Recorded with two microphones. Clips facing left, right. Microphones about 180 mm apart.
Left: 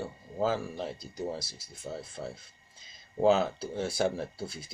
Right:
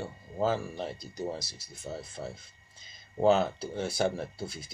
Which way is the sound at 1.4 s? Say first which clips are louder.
Left 1 dB; 50° left (ahead or behind).